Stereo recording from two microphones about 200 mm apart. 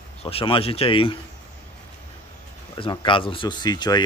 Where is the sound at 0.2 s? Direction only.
30° left (ahead or behind).